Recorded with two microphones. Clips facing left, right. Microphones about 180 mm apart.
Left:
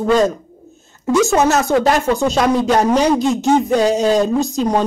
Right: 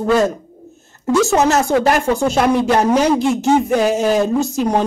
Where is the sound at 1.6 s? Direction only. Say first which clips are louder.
Even; 10° right (ahead or behind).